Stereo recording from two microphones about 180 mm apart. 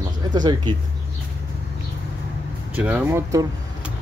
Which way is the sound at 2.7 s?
10° right (ahead or behind).